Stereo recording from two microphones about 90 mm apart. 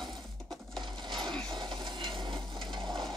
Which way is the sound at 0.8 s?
65° right (ahead or behind).